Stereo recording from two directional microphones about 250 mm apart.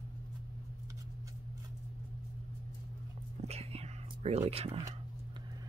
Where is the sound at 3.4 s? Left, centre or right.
Right.